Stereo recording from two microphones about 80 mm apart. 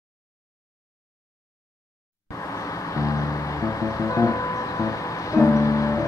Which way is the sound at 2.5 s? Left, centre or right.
Left.